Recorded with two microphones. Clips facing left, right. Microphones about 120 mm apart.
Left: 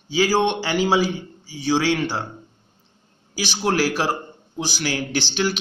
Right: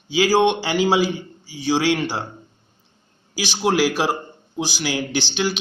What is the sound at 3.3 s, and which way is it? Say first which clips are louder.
A man's voice: right 2 dB; 10° right (ahead or behind).